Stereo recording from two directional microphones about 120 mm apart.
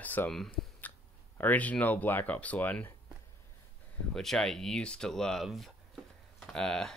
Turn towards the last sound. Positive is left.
turn(degrees=5)  # may be behind; listen again after turning